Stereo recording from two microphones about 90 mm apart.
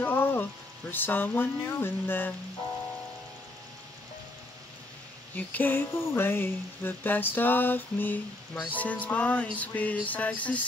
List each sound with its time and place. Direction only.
0.0 s speech: 25° left (ahead or behind)
5.3 s a sound: 20° left (ahead or behind)
8.7 s music: 15° left (ahead or behind)